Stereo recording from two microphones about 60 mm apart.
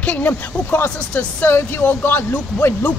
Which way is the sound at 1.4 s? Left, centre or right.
Left.